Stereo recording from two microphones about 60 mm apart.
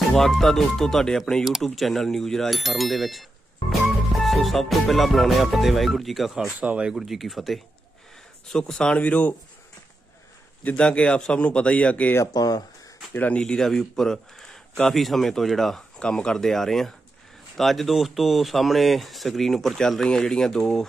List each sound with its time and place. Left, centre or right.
0.1 s speech: centre
3.8 s music: centre
6.6 s speech: right
6.9 s speech: centre; by 9.3 s left
10.7 s speech: centre
12.3 s speech: left
13.4 s speech: centre
16.0 s speech: centre